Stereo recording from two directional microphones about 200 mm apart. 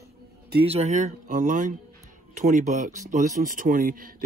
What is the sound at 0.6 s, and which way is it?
Speech, 30° right (ahead or behind).